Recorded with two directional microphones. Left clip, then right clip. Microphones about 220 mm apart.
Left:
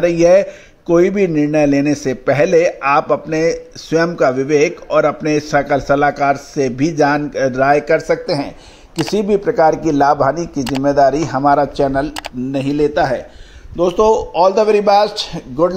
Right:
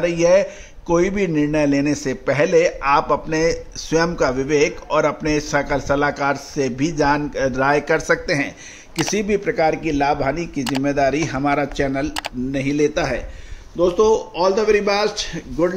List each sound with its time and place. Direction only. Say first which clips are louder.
0.0 s a man's voice: left 5 dB; 15° left (ahead or behind)
10.6 s speech: left 7 dB; centre (ahead or behind)
12.9 s a man's voice: left 6 dB; 10° left (ahead or behind)
13.7 s a man's voice: left 3 dB; 30° left (ahead or behind)